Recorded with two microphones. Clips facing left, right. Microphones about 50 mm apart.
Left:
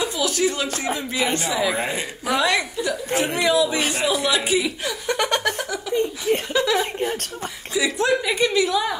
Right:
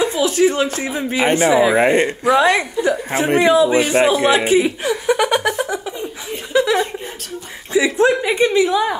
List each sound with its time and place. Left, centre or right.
0.0 s a woman's voice: right
1.9 s a woman's voice: right
5.0 s chuckle: centre
5.5 s a sound: right
6.5 s a woman's voice: right